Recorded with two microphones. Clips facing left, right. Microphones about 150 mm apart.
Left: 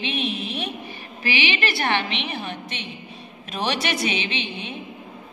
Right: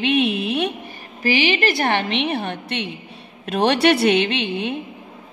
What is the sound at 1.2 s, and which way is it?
A woman's voice, 40° right (ahead or behind).